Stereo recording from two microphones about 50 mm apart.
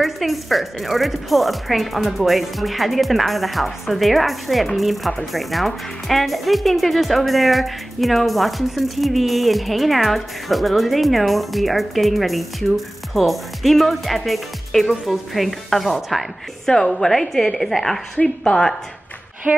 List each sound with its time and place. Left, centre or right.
0.0 s speech: centre
19.5 s speech: right